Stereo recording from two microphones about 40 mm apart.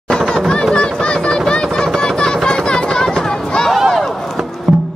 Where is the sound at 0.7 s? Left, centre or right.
Centre.